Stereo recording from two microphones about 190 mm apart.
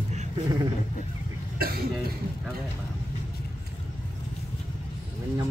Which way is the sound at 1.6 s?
50° right (ahead or behind).